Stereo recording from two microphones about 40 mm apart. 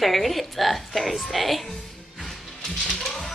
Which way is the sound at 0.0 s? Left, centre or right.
Centre.